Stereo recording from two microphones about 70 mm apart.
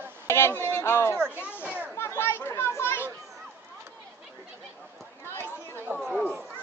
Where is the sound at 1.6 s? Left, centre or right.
Centre.